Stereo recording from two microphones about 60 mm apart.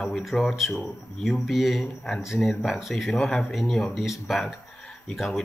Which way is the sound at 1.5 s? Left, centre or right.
Centre.